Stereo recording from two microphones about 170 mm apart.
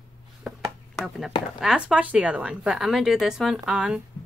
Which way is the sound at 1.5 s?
5° right (ahead or behind).